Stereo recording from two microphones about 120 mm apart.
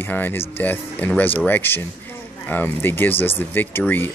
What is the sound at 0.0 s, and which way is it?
Speech, 15° left (ahead or behind).